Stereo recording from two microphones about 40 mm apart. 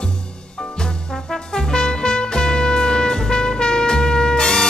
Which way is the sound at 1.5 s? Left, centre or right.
Centre.